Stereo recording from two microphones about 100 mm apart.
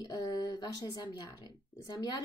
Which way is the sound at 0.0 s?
40° left (ahead or behind).